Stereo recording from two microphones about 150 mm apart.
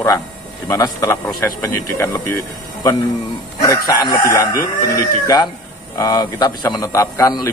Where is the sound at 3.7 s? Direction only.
25° left (ahead or behind).